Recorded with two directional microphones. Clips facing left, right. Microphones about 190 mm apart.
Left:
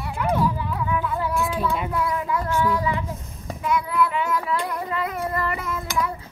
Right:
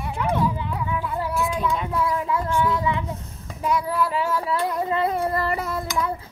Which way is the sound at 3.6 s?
35° right (ahead or behind).